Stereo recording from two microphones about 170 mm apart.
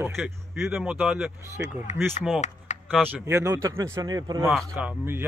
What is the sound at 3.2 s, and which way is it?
Speech, 15° right (ahead or behind).